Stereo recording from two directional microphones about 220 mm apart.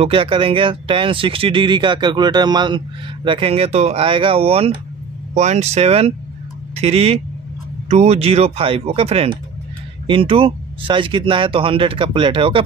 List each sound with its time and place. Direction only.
0.0 s speech: 25° right (ahead or behind)